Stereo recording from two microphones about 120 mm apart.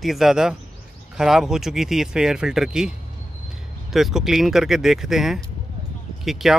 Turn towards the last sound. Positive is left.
turn(degrees=0)  # may be behind; listen again after turning